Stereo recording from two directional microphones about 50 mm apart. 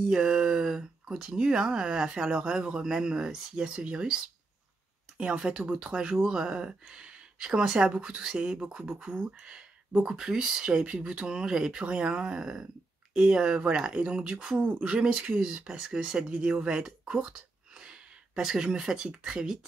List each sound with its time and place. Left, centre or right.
0.0 s speech: centre
5.1 s speech: centre